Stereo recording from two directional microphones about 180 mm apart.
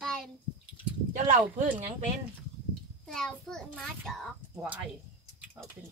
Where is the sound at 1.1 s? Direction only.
45° right (ahead or behind).